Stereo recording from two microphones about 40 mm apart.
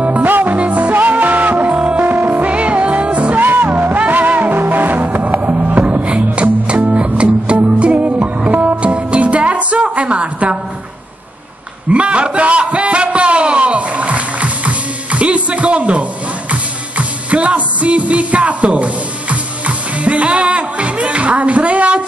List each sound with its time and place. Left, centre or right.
0.0 s music: right
0.9 s music: right
2.5 s music: right
3.3 s music: right
6.0 s music: right
9.9 s a sound: right
11.9 s a sound: right